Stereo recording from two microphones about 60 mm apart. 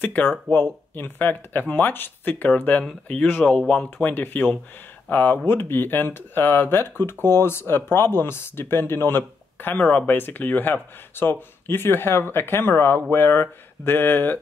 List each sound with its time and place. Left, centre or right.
0.0 s speech: left
3.4 s speech: centre
4.0 s speech: left